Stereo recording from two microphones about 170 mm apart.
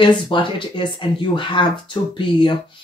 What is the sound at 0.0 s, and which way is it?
Speech, 30° left (ahead or behind).